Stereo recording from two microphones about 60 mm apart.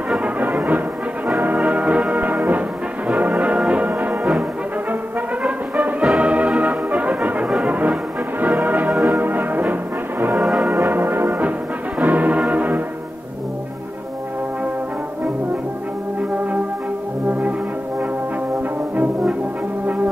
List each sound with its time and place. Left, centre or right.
0.1 s music: right
3.1 s brass instrument: right
5.4 s brass instrument: right
7.5 s music: right
12.0 s brass instrument: right
17.3 s brass instrument: right